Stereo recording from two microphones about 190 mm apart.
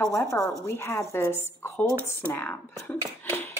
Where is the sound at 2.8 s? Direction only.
10° left (ahead or behind).